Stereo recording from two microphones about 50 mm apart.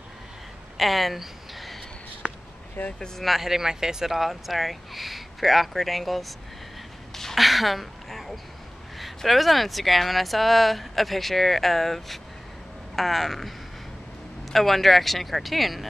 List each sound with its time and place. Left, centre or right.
0.7 s a sound: centre
2.2 s basketball bounce: right
2.8 s speech: left
3.2 s speech: centre
7.2 s a sound: centre
8.9 s speech: centre
14.5 s speech: centre